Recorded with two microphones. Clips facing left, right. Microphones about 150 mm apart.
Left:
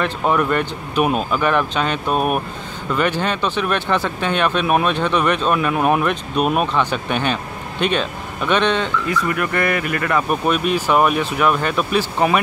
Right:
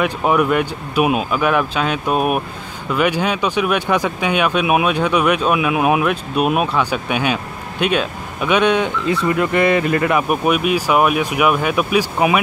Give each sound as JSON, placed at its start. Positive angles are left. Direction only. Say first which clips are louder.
{"t": 0.0, "sound": "speech", "louder": "right 2 dB", "side_deg": -10}
{"t": 9.1, "sound": "speech", "louder": "right 6 dB", "side_deg": -25}
{"t": 10.3, "sound": "speech", "louder": "right 2 dB", "side_deg": -5}